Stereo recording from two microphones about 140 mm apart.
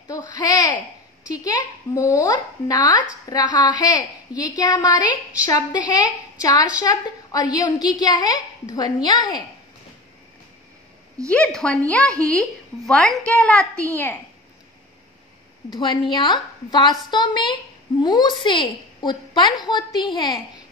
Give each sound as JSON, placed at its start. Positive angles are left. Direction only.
{"t": 0.1, "sound": "speech", "side_deg": 25}
{"t": 11.2, "sound": "a woman's voice", "side_deg": 10}
{"t": 15.7, "sound": "a woman's voice", "side_deg": 35}